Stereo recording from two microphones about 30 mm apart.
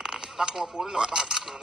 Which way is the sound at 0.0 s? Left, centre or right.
Right.